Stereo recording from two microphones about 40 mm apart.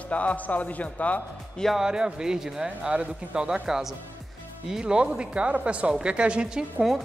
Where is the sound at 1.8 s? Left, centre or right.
Centre.